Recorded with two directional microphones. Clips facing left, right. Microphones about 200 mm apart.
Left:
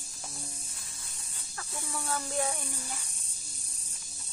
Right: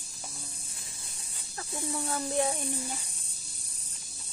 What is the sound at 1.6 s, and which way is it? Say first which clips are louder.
Speech: right 5 dB; 25° right (ahead or behind).